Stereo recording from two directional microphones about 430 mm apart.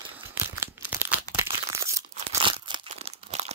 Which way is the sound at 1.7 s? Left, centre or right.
Centre.